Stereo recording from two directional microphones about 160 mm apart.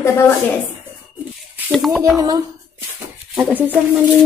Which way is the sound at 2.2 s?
25° right (ahead or behind).